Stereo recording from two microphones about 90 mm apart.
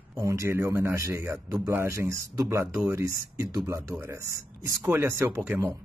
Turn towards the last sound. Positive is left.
turn(degrees=-20)  # may be behind; listen again after turning